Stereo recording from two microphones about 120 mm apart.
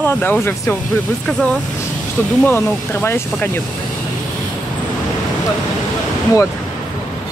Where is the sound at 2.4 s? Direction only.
15° left (ahead or behind).